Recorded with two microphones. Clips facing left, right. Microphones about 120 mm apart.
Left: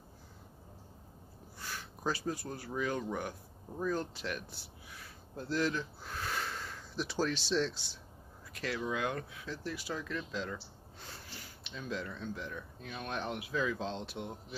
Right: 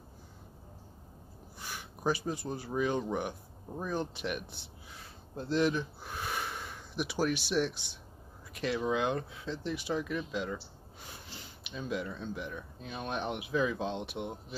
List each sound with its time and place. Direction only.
1.6 s speech: 15° right (ahead or behind)